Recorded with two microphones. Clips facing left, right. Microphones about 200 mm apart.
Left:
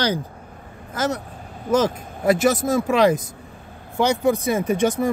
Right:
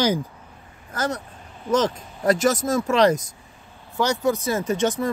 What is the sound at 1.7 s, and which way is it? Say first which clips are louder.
Speech: left 2 dB; 10° left (ahead or behind).